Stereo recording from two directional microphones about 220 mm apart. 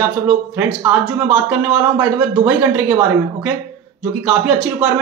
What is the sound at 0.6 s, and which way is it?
Speech, 5° right (ahead or behind).